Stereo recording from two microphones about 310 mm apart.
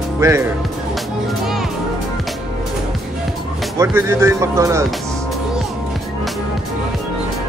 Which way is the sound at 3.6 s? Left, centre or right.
Centre.